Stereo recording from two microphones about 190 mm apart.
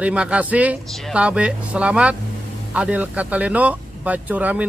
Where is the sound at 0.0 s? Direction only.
5° right (ahead or behind).